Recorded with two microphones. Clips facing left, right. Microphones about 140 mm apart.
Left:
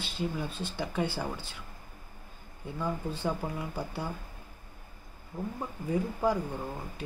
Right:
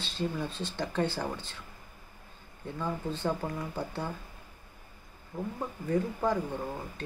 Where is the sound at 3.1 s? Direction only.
10° left (ahead or behind).